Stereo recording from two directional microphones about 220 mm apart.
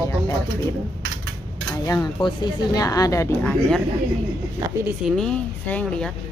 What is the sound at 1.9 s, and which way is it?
Speech, 10° left (ahead or behind).